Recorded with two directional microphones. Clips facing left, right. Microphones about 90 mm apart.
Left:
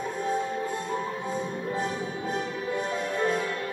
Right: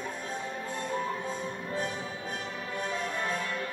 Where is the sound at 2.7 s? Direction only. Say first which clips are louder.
Left 4 dB; 10° left (ahead or behind).